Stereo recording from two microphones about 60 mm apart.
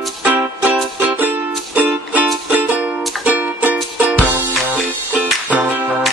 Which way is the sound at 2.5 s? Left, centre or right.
Right.